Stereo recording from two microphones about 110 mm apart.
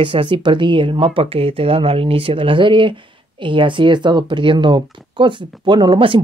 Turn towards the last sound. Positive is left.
turn(degrees=-50)  # may be behind; listen again after turning